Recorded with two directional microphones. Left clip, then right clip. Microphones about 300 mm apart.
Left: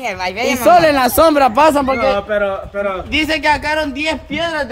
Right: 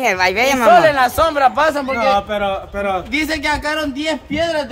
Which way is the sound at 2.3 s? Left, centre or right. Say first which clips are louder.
Left 2 dB; right.